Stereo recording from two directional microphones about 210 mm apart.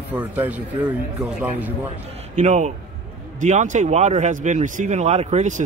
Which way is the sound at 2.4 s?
35° right (ahead or behind).